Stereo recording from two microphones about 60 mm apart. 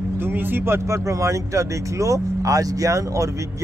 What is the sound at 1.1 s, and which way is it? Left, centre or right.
Speech, right.